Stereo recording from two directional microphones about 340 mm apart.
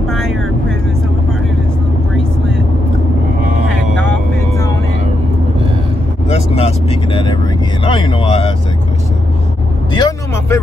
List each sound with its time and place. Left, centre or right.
0.1 s vehicle: centre
6.5 s vehicle: centre
9.9 s vehicle: centre